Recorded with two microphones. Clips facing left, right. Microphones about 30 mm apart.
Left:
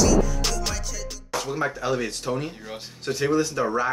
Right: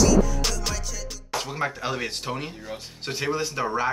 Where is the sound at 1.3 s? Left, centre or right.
Centre.